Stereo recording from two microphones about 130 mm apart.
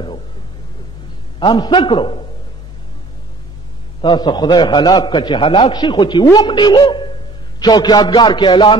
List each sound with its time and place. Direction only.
1.4 s a man's voice: 35° left (ahead or behind)
4.0 s a man's voice: 35° left (ahead or behind)